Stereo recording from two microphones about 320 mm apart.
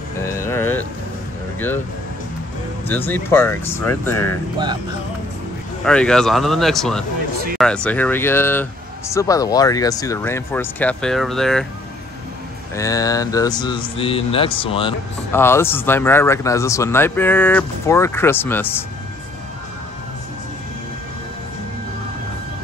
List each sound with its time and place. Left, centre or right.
0.2 s music: centre
2.9 s speech: centre
5.9 s speech: centre
12.7 s speech: centre